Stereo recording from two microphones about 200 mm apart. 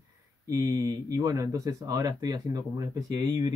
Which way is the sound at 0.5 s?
15° right (ahead or behind).